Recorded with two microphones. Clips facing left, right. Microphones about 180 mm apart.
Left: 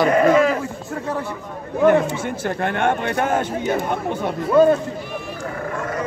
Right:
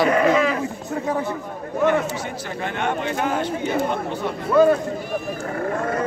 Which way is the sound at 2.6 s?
55° left (ahead or behind).